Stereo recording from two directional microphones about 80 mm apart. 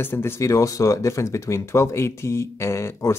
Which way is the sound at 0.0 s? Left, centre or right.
Left.